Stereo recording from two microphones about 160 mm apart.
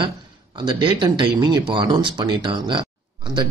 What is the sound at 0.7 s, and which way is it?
Speech, 30° right (ahead or behind).